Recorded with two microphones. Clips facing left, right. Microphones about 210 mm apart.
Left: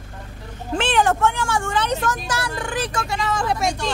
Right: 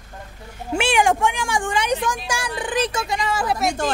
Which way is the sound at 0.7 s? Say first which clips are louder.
Right 1 dB; 10° right (ahead or behind).